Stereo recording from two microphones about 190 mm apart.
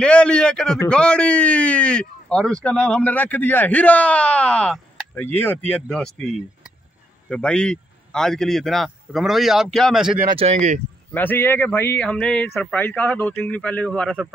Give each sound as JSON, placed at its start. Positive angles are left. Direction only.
{"t": 0.0, "sound": "speech", "side_deg": 5}
{"t": 10.3, "sound": "speech", "side_deg": -35}
{"t": 11.1, "sound": "speech", "side_deg": 10}